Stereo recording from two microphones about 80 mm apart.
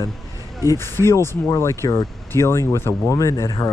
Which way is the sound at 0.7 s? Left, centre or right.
Left.